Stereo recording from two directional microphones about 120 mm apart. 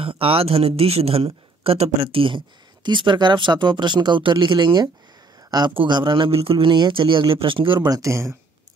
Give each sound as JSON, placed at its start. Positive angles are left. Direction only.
{"t": 0.0, "sound": "a man's voice", "side_deg": -50}